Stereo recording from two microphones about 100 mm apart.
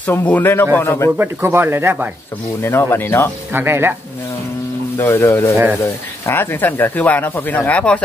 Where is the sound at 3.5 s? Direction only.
25° right (ahead or behind).